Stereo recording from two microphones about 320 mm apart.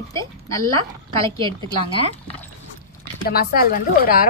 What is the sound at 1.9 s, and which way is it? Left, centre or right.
Speech, centre.